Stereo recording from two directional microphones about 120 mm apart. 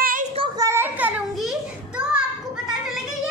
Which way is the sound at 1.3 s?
Centre (ahead or behind).